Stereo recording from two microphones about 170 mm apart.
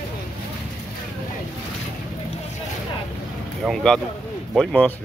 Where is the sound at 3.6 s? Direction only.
5° left (ahead or behind).